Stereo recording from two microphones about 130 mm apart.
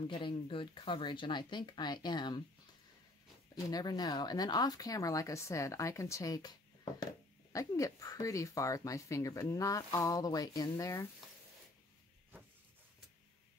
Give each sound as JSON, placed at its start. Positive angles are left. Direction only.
{"t": 0.1, "sound": "speech", "side_deg": 40}
{"t": 3.7, "sound": "speech", "side_deg": 30}